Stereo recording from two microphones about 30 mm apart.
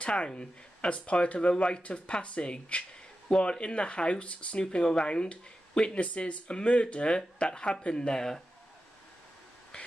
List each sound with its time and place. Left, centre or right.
0.0 s speech: left
4.6 s speech: left
5.9 s speech: left; by 8.4 s centre